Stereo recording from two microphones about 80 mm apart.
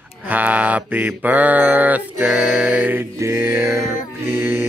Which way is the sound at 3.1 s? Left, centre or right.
Right.